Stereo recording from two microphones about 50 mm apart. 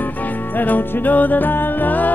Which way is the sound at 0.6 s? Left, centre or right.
Left.